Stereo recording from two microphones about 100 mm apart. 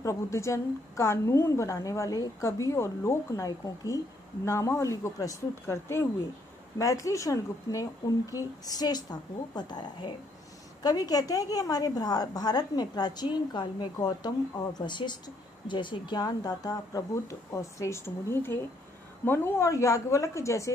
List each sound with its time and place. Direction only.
0.0 s a woman's voice: 30° left (ahead or behind)